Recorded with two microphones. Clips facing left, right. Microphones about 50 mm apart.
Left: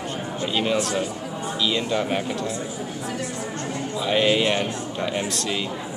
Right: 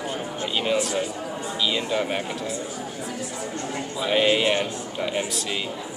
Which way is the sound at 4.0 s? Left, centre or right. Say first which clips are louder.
Even; centre.